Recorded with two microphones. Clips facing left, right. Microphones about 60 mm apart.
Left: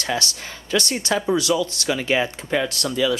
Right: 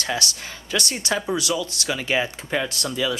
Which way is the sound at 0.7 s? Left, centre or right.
Left.